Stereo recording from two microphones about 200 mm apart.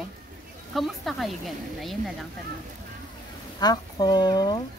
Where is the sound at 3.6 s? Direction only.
20° left (ahead or behind).